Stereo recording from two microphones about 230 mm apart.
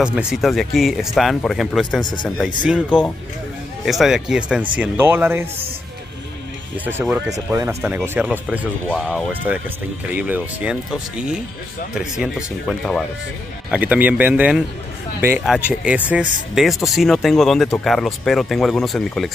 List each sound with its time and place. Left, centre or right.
0.0 s speech: centre
2.0 s speech: centre
2.2 s speech: centre
6.8 s speech: centre